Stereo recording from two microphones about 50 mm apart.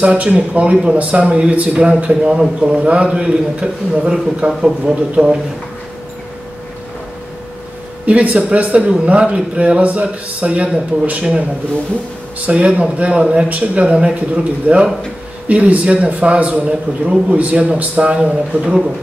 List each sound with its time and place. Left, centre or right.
0.0 s a man's voice: right
4.5 s speech: centre
5.1 s a man's voice: centre
8.1 s a man's voice: right
12.4 s a man's voice: right